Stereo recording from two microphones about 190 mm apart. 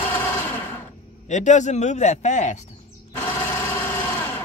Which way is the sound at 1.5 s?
40° left (ahead or behind).